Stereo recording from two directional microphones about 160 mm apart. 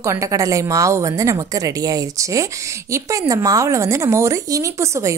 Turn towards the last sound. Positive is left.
turn(degrees=-20)  # may be behind; listen again after turning